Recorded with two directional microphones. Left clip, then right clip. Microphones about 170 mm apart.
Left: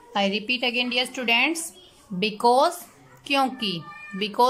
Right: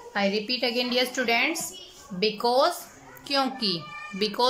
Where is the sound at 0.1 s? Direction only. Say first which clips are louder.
Left 2 dB; 15° left (ahead or behind).